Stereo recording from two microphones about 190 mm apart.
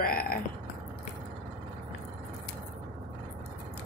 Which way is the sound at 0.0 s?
50° left (ahead or behind).